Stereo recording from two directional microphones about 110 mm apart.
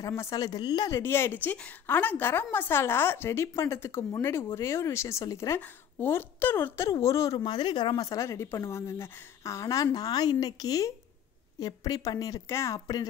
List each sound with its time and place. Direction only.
0.0 s speech: 30° left (ahead or behind)
0.9 s a woman's voice: 20° left (ahead or behind)